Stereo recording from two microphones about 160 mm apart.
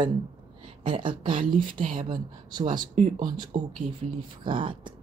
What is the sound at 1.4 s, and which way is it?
Speech, 60° right (ahead or behind).